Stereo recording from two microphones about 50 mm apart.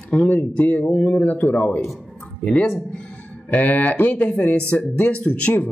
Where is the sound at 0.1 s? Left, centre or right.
Left.